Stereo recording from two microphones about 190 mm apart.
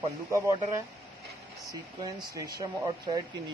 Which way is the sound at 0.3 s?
15° right (ahead or behind).